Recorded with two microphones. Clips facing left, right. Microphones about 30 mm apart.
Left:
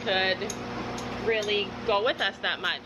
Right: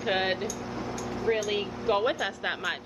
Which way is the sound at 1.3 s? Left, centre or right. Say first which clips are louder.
Left 1 dB; left.